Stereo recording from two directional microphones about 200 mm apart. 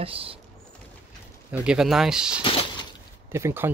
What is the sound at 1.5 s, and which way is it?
Speech, 5° right (ahead or behind).